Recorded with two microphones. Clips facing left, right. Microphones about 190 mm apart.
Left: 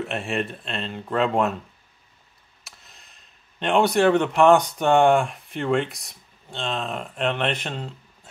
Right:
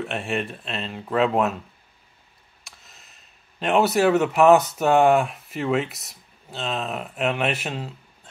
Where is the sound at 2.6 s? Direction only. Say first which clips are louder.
Even; centre (ahead or behind).